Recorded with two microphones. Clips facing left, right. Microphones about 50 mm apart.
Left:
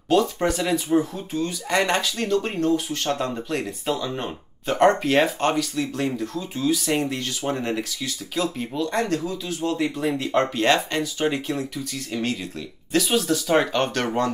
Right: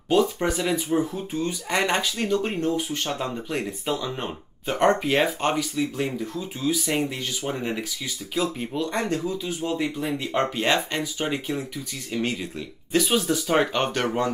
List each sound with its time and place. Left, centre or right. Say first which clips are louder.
0.1 s speech: left 1 dB; centre
1.3 s speech: left 4 dB; right
9.8 s speech: left 3 dB; centre